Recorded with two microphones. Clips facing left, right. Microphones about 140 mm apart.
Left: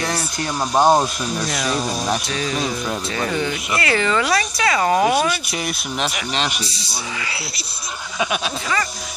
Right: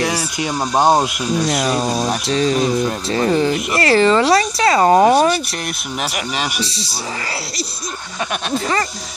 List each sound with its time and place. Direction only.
0.0 s speech: 15° right (ahead or behind)
1.8 s speech: 35° right (ahead or behind)
6.3 s speech: 10° right (ahead or behind)
6.6 s speech: 30° right (ahead or behind)